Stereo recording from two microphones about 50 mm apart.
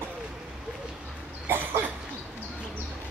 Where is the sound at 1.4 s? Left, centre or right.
Right.